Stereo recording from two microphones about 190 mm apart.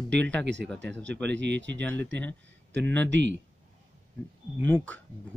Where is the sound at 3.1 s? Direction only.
70° right (ahead or behind).